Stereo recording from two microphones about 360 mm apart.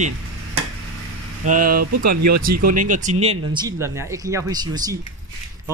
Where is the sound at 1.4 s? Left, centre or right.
Right.